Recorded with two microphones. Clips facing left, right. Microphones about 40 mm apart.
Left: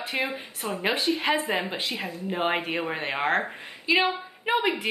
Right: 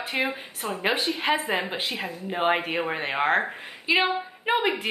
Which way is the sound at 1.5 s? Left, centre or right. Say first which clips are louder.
Right 1 dB; right.